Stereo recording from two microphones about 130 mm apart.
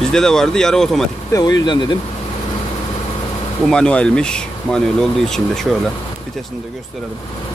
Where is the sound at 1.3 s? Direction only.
30° left (ahead or behind).